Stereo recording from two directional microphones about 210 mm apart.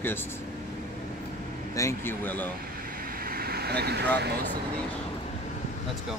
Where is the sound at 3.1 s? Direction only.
45° right (ahead or behind).